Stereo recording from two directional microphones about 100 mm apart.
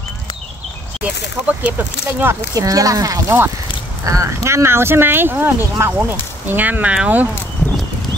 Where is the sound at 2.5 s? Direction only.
35° right (ahead or behind); by 7.2 s 15° right (ahead or behind).